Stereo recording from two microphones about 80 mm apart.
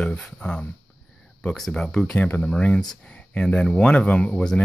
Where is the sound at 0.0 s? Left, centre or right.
Centre.